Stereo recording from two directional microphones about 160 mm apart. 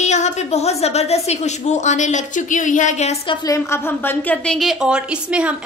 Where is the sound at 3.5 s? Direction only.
15° left (ahead or behind); by 5.5 s 5° right (ahead or behind).